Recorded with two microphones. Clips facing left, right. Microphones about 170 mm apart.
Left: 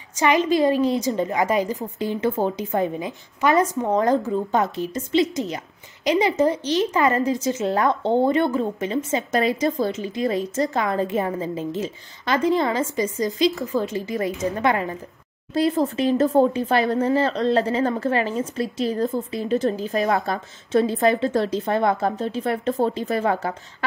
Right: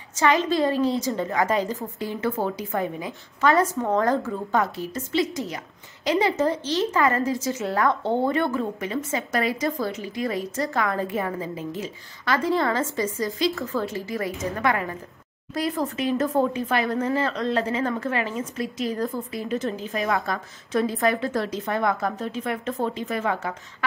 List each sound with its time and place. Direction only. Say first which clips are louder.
0.1 s a woman's voice: left 2 dB; 15° left (ahead or behind); by 23.9 s 35° left (ahead or behind)